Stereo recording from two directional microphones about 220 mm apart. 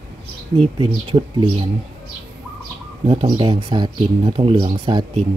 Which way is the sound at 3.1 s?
25° right (ahead or behind).